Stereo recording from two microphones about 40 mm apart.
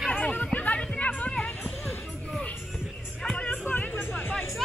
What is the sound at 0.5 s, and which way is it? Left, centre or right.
Music, left.